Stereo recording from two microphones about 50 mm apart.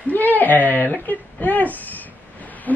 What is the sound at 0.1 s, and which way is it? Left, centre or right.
Whimper, left.